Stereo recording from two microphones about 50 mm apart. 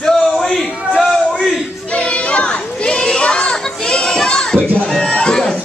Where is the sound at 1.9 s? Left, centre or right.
Left.